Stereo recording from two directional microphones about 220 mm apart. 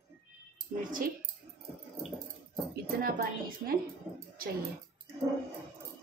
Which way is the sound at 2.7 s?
40° right (ahead or behind).